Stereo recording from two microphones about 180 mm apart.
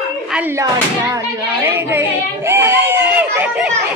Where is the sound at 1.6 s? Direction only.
10° right (ahead or behind).